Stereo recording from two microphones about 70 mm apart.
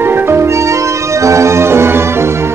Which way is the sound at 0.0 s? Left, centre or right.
Right.